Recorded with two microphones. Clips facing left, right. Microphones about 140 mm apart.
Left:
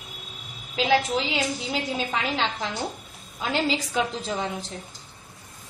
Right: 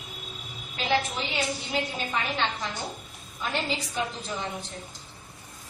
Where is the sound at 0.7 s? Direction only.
90° left.